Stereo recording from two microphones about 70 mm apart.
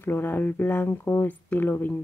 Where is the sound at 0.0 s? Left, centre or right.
Left.